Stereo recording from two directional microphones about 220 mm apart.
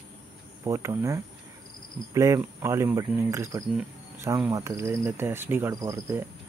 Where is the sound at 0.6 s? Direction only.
15° right (ahead or behind).